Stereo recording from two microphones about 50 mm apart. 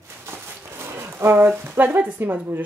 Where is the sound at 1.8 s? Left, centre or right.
Right.